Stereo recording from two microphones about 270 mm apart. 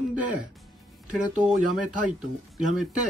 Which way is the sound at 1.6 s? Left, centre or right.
Right.